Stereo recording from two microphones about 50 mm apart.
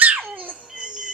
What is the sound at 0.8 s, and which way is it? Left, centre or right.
Music, centre.